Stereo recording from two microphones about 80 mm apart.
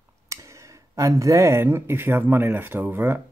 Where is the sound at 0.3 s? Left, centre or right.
Right.